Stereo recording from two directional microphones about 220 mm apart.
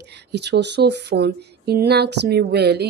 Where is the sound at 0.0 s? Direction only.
50° right (ahead or behind).